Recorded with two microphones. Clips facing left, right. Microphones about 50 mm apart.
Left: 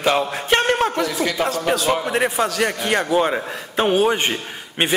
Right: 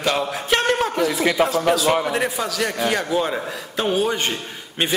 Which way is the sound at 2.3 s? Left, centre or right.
Centre.